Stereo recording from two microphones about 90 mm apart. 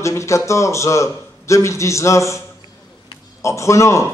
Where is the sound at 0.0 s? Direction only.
35° left (ahead or behind).